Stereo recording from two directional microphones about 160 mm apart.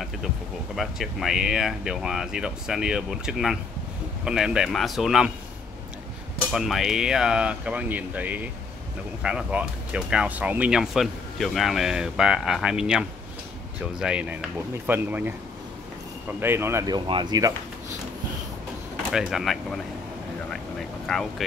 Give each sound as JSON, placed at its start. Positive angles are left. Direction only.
{"t": 0.7, "sound": "speech", "side_deg": 0}
{"t": 6.5, "sound": "speech", "side_deg": -5}
{"t": 16.3, "sound": "speech", "side_deg": -15}
{"t": 16.9, "sound": "speech", "side_deg": -25}
{"t": 19.1, "sound": "speech", "side_deg": 0}
{"t": 21.1, "sound": "speech", "side_deg": 0}